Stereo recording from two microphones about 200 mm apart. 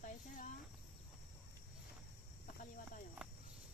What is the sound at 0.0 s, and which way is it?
Cricket, 40° left (ahead or behind).